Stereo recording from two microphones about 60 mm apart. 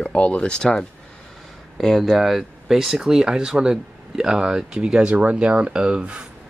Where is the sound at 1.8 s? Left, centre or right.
Centre.